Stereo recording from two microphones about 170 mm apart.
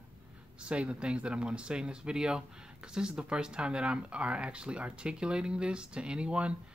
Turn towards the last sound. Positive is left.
turn(degrees=-5)  # may be behind; listen again after turning